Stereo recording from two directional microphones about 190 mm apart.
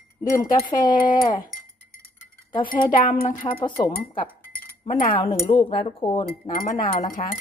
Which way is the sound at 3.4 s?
25° left (ahead or behind).